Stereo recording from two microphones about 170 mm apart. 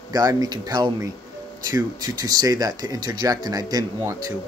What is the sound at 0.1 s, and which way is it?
Speech, 20° right (ahead or behind).